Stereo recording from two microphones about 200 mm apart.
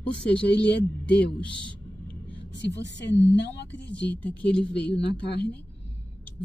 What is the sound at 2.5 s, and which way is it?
A woman's voice, 60° left (ahead or behind).